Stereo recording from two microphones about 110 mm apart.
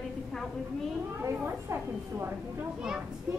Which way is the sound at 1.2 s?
25° right (ahead or behind).